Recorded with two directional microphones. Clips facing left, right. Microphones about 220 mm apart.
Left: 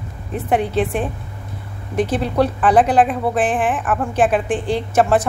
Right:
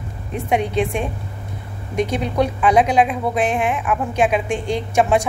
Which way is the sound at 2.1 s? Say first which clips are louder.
Left 3 dB; 5° left (ahead or behind).